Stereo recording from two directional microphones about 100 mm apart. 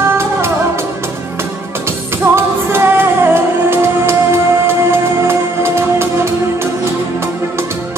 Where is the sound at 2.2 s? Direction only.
30° right (ahead or behind).